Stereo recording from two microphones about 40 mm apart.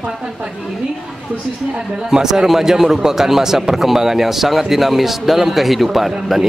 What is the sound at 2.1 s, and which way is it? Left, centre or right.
Speech, centre.